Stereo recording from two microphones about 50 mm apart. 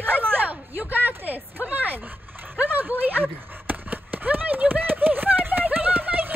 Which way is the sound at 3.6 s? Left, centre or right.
Right.